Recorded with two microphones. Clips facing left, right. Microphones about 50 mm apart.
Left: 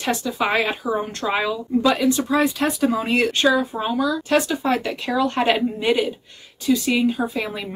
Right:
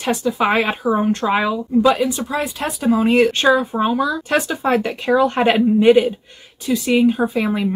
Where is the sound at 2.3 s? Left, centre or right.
Centre.